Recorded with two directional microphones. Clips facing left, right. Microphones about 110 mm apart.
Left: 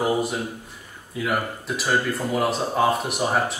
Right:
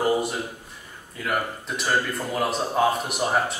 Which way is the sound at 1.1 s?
5° left (ahead or behind).